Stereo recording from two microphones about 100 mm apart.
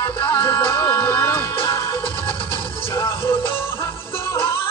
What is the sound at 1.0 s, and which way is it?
Music, 25° left (ahead or behind).